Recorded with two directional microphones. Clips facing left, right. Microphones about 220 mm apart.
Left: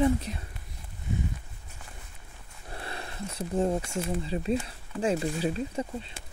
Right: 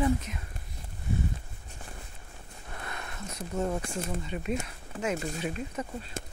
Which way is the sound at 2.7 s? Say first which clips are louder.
Left 2 dB; 30° left (ahead or behind).